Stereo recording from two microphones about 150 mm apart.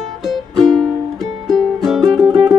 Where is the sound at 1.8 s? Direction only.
Centre (ahead or behind).